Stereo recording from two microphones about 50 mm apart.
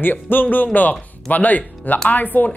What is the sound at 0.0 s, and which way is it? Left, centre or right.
Speech, left.